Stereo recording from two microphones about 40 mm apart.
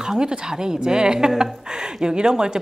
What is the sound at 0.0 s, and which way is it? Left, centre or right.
A woman's voice, centre.